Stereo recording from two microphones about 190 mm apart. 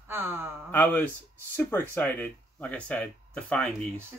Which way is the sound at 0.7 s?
10° left (ahead or behind).